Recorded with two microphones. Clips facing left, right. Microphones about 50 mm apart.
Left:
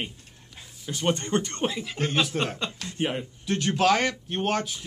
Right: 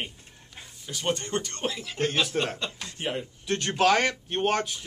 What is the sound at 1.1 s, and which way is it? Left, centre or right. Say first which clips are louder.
Speech: left 4 dB; left.